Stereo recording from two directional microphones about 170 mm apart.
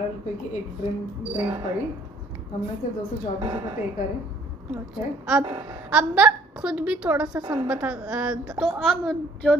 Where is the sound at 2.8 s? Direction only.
50° left (ahead or behind).